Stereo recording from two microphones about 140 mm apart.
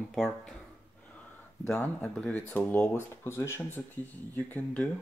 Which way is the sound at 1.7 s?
5° left (ahead or behind).